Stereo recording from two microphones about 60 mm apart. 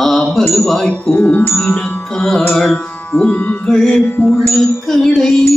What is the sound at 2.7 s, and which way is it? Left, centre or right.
Music, centre.